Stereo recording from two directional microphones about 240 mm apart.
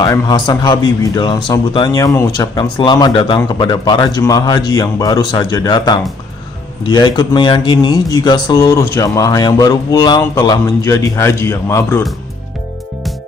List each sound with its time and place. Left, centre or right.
0.0 s speech: centre